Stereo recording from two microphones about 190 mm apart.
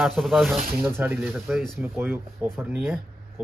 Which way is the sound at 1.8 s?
10° right (ahead or behind).